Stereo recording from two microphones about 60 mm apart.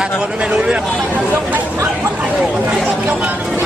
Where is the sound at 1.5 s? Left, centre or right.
Right.